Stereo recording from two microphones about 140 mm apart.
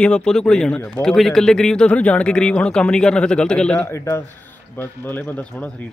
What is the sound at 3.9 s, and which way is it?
A man's voice, 20° left (ahead or behind).